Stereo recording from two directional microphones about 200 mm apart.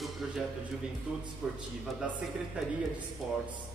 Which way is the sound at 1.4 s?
5° right (ahead or behind).